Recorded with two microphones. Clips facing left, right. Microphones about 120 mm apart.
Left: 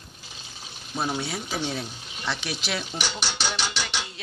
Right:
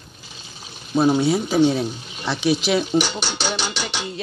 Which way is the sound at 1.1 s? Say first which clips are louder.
Right 12 dB; 25° right (ahead or behind).